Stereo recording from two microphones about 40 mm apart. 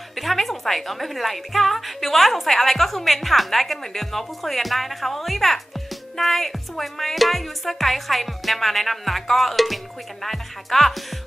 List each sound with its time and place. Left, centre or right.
0.1 s a woman's voice: centre